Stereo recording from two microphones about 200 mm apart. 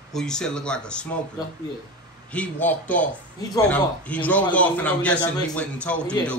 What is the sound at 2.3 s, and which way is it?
A man's voice, 10° left (ahead or behind).